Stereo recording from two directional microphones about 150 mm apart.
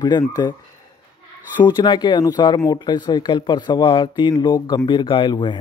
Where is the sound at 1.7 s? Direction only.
30° left (ahead or behind).